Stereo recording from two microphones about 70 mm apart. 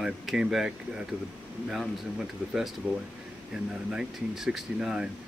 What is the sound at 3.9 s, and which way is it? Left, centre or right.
Speech, centre.